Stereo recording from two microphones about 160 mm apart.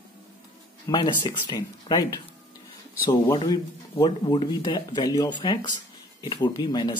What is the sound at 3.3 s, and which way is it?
Speech, 30° left (ahead or behind).